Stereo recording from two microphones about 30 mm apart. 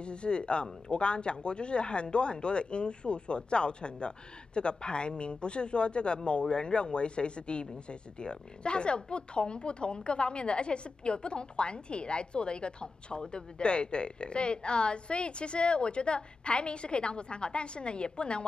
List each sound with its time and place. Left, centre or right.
0.0 s speech: left